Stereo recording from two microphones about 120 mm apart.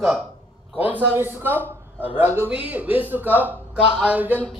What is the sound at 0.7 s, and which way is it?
Speech, 15° right (ahead or behind).